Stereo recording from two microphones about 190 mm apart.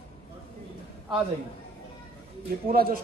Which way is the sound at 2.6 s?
50° right (ahead or behind).